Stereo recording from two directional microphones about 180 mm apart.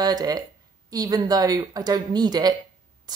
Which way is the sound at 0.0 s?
20° right (ahead or behind).